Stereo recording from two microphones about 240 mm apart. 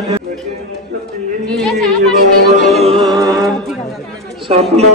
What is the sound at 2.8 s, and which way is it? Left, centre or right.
Music, right.